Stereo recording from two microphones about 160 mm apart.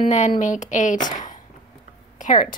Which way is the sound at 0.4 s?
50° left (ahead or behind).